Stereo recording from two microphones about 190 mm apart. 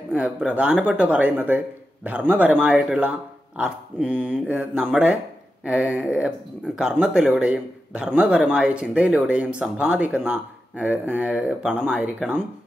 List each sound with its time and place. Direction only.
0.1 s speech: 5° right (ahead or behind)